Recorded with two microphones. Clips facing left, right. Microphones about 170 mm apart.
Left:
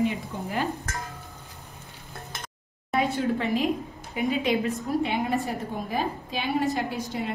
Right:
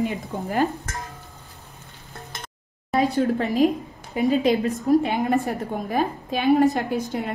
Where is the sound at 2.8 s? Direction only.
35° right (ahead or behind); by 7.3 s 55° right (ahead or behind).